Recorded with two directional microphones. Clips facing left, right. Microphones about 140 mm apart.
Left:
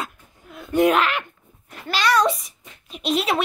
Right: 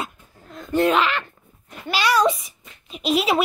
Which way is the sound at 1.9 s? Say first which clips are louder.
Even; 5° right (ahead or behind).